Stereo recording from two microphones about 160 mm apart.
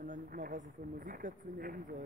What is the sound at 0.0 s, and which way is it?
Speech, 60° right (ahead or behind).